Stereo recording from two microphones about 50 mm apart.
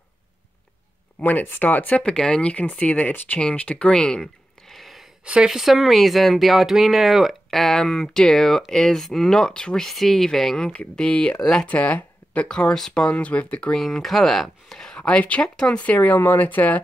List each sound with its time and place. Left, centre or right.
1.2 s speech: left
2.1 s speech: centre
5.2 s speech: right
5.5 s speech: centre
7.7 s speech: centre
9.8 s speech: centre
11.0 s speech: left
11.3 s speech: centre
11.6 s speech: left
12.4 s speech: centre
13.1 s speech: left
13.7 s speech: centre
14.9 s speech: left